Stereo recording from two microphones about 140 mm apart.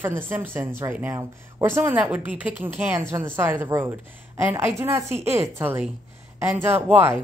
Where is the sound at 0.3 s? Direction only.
15° right (ahead or behind).